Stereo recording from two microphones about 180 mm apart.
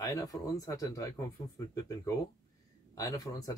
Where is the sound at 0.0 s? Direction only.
20° left (ahead or behind).